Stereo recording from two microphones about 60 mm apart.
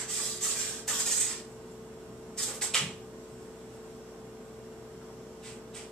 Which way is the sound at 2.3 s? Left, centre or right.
Centre.